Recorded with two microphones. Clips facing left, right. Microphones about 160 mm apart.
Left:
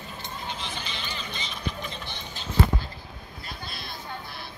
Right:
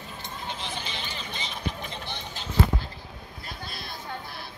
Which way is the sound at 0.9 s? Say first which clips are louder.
Even; 55° right (ahead or behind).